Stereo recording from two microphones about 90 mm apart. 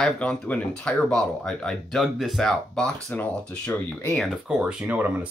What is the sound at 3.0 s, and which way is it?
Speech, 20° left (ahead or behind).